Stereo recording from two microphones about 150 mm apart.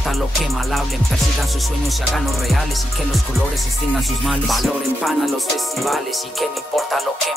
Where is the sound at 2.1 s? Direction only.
Centre (ahead or behind).